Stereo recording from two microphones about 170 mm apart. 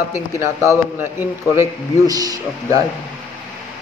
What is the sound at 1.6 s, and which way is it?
A man's voice, 20° right (ahead or behind).